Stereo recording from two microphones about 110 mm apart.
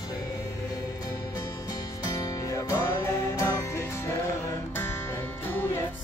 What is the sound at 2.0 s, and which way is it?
Music, 35° left (ahead or behind).